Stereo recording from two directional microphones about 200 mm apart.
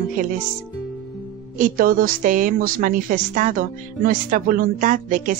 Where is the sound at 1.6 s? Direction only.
45° right (ahead or behind).